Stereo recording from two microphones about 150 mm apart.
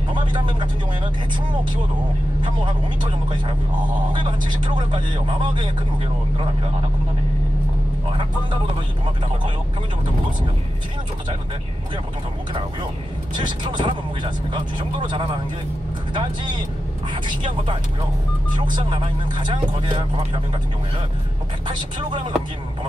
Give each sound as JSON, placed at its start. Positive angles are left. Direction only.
{"t": 0.1, "sound": "speech", "side_deg": -35}
{"t": 3.1, "sound": "speech", "side_deg": -35}
{"t": 13.3, "sound": "speech", "side_deg": -30}
{"t": 18.8, "sound": "speech", "side_deg": -30}
{"t": 21.6, "sound": "speech", "side_deg": -30}